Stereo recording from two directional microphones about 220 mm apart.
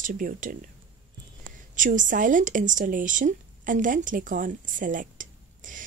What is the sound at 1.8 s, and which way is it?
Speech, 35° right (ahead or behind).